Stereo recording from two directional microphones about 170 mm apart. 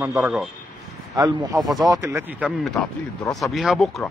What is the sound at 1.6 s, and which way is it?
Speech, centre (ahead or behind).